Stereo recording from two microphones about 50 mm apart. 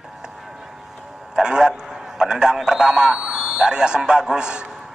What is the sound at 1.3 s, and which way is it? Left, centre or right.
A man's voice, centre.